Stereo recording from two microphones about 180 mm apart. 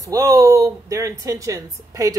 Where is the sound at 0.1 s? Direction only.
20° right (ahead or behind).